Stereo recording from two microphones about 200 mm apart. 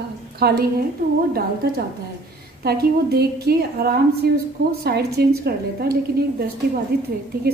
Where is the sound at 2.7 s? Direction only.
55° right (ahead or behind).